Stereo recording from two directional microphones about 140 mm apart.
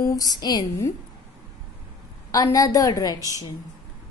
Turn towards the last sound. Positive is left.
turn(degrees=25)  # may be behind; listen again after turning